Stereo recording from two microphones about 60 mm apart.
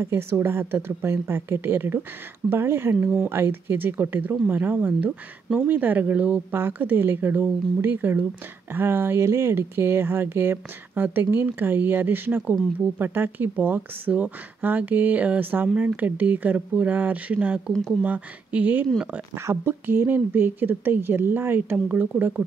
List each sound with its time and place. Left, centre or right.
0.0 s speech: right
19.3 s speech: right